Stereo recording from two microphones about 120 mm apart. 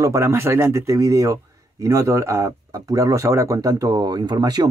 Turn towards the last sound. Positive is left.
turn(degrees=-35)  # may be behind; listen again after turning